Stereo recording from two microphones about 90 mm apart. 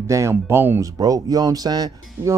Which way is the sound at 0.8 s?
40° right (ahead or behind).